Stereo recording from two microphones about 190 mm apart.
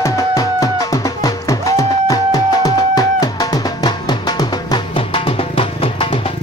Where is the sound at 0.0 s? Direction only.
15° left (ahead or behind).